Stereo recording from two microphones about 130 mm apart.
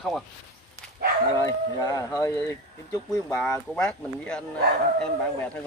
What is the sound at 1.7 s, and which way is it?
Speech, 30° left (ahead or behind).